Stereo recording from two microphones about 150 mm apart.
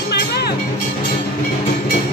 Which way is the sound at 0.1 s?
90° left.